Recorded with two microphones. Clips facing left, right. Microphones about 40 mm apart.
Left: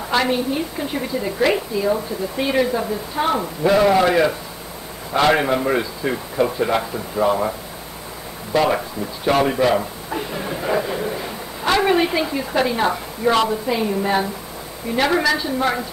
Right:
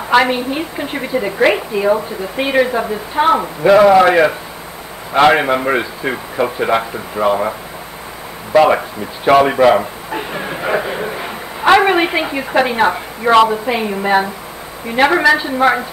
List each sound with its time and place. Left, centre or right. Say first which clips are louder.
0.1 s a woman's voice: right 6 dB; right
8.5 s a woman's voice: right 7 dB; right